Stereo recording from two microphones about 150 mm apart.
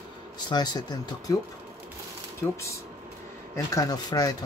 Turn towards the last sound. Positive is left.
turn(degrees=25)  # may be behind; listen again after turning